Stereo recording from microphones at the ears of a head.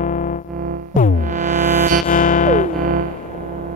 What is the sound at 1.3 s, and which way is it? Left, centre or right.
Music, right.